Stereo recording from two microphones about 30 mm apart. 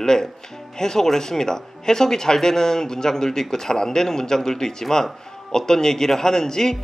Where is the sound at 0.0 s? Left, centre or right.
Left.